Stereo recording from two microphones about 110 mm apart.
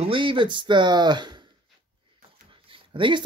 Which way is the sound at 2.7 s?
50° right (ahead or behind).